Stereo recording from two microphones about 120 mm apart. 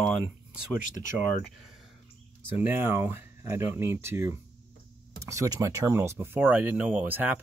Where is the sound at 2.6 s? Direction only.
20° right (ahead or behind).